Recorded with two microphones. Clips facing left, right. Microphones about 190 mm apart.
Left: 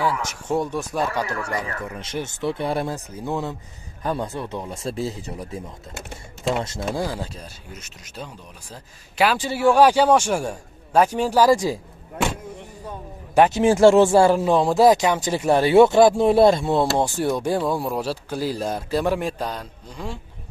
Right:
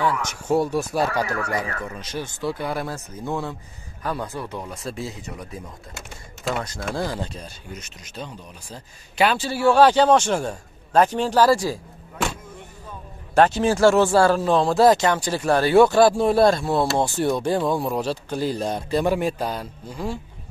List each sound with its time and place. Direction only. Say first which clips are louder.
0.0 s speech: even; 5° left (ahead or behind)
2.0 s speech: left 2 dB; 25° left (ahead or behind)
7.0 s speech: even; 5° left (ahead or behind)
9.4 s speech: even; 15° left (ahead or behind)
13.3 s speech: left 2 dB; 15° left (ahead or behind); by 20.2 s 5° right (ahead or behind)